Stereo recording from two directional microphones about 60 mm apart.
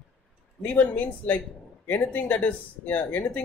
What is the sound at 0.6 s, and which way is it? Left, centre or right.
Speech, left.